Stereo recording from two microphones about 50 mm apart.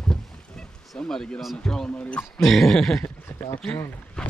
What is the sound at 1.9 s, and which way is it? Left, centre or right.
Speech, left.